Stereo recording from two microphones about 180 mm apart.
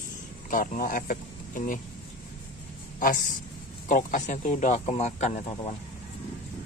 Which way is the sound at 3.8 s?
45° left (ahead or behind).